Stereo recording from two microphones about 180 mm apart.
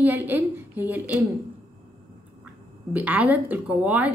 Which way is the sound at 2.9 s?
10° right (ahead or behind).